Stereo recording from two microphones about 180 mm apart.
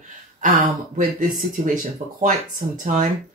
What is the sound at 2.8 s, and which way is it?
Speech, 45° right (ahead or behind).